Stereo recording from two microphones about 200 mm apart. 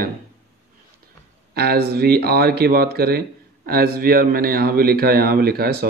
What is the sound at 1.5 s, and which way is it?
Speech, 50° right (ahead or behind).